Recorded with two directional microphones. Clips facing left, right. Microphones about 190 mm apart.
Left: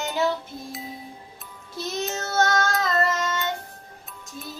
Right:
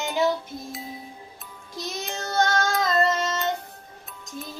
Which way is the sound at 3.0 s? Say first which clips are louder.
Right 3 dB; 25° right (ahead or behind).